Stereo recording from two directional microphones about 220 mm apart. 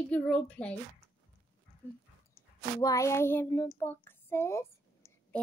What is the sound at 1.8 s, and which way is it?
Dog, 10° left (ahead or behind).